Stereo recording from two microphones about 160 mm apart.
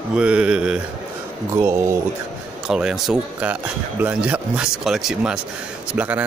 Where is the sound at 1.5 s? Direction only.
15° right (ahead or behind).